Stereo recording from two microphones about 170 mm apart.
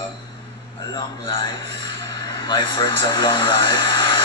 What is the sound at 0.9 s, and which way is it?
Speech, 25° left (ahead or behind).